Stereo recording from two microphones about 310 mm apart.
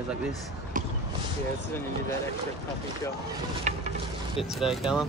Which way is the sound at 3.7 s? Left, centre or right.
Right.